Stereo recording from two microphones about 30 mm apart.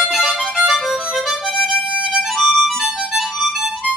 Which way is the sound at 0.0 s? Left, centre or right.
Centre.